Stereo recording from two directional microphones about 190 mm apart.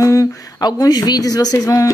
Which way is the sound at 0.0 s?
15° left (ahead or behind).